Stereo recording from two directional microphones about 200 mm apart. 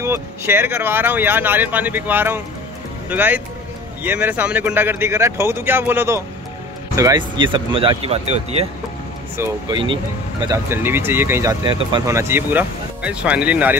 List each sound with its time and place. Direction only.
0.0 s speech: 10° right (ahead or behind)
11.6 s speech: 20° right (ahead or behind)